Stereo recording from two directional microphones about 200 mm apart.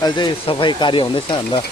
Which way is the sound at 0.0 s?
25° left (ahead or behind).